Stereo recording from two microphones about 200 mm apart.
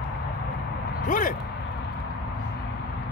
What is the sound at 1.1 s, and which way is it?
Speech, 40° left (ahead or behind).